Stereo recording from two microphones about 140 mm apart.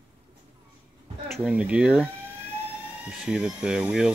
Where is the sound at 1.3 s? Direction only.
10° right (ahead or behind).